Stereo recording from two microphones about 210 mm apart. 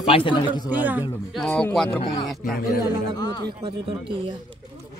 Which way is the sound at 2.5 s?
45° left (ahead or behind).